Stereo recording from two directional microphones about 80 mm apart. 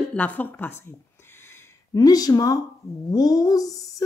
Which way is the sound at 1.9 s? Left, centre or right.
Left.